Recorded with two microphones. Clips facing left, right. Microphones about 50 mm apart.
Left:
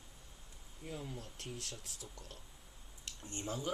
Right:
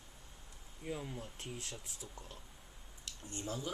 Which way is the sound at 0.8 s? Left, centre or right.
Right.